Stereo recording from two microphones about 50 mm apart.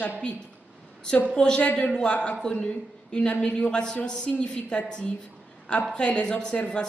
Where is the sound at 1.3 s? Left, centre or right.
Centre.